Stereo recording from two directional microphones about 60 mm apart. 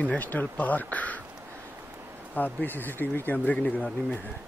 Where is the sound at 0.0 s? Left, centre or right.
Left.